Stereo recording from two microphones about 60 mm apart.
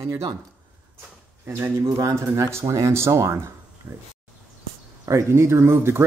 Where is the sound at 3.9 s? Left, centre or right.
Right.